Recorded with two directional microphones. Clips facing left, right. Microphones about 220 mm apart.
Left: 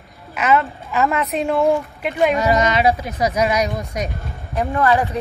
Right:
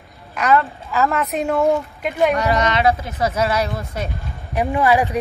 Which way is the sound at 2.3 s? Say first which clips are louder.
Left 2 dB; 15° left (ahead or behind).